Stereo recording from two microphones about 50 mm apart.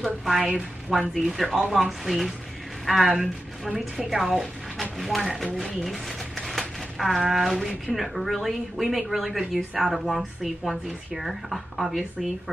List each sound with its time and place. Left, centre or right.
0.0 s speech: centre
0.4 s speech: right
1.1 s a woman's voice: centre
5.9 s a sound: centre
7.0 s speech: centre